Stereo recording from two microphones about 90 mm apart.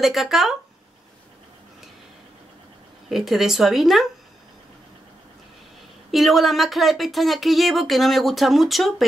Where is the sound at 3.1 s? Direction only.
Centre (ahead or behind).